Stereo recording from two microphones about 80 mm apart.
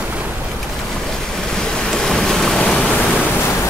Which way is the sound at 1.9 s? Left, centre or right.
Centre.